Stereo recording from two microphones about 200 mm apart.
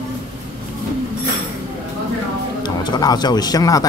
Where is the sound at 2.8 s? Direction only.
20° left (ahead or behind).